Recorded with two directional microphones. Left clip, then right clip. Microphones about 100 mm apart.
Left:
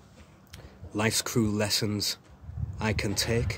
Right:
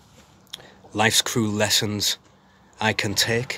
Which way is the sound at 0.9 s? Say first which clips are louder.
Right 8 dB; 20° left (ahead or behind).